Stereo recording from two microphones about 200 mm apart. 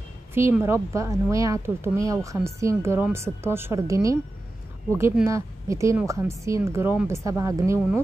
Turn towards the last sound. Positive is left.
turn(degrees=-15)  # may be behind; listen again after turning